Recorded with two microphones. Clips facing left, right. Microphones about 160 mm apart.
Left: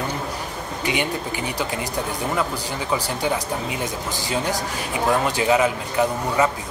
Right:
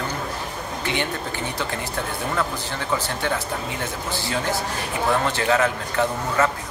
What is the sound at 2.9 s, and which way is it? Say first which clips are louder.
Speech: left 2 dB; 10° left (ahead or behind).